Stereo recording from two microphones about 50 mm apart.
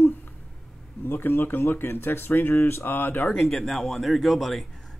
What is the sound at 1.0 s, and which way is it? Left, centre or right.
Speech, left.